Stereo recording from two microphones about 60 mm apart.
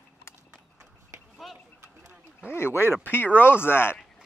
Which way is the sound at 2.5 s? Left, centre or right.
Left.